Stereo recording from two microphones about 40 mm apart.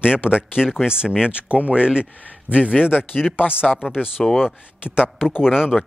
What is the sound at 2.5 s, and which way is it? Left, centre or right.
Speech, left.